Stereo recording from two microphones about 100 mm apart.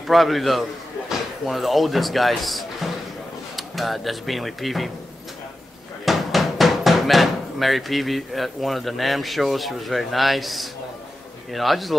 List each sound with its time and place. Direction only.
0.0 s speech: centre (ahead or behind)
6.0 s speech: centre (ahead or behind)